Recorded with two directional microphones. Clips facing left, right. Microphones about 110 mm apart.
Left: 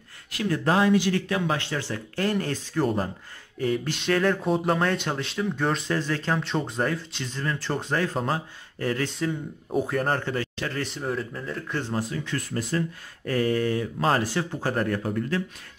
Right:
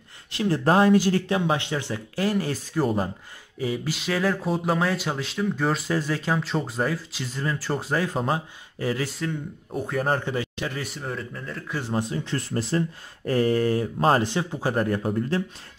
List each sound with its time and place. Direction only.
0.3 s speech: 30° right (ahead or behind)
1.3 s speech: 20° right (ahead or behind)
11.0 s speech: centre (ahead or behind)
11.8 s speech: 20° right (ahead or behind); by 13.8 s 35° right (ahead or behind)
13.9 s speech: 25° right (ahead or behind)